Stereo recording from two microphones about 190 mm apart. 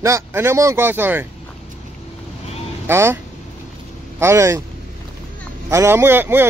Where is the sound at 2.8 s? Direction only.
10° right (ahead or behind).